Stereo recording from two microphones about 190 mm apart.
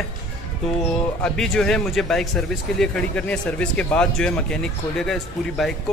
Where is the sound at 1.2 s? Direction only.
5° left (ahead or behind).